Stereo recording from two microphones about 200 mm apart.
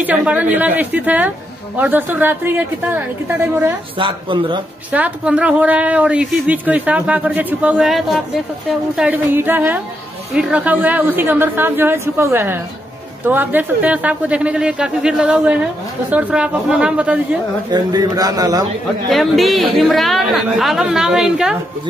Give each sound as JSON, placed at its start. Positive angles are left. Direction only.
{"t": 0.0, "sound": "speech", "side_deg": -5}
{"t": 4.0, "sound": "speech", "side_deg": -25}
{"t": 4.9, "sound": "a man's voice", "side_deg": -5}
{"t": 17.6, "sound": "speech", "side_deg": -20}
{"t": 19.0, "sound": "a man's voice", "side_deg": 0}